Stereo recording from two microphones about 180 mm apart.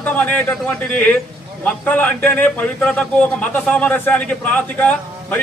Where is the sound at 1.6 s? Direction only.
10° left (ahead or behind).